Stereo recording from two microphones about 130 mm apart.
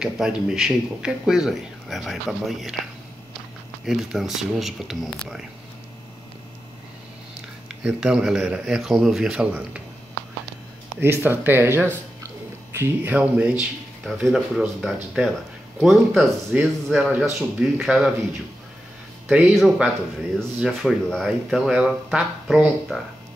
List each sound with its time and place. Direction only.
0.0 s speech: 5° right (ahead or behind)
7.6 s speech: 5° right (ahead or behind)
11.0 s a man's voice: 15° right (ahead or behind); by 18.1 s centre (ahead or behind)
19.2 s speech: centre (ahead or behind)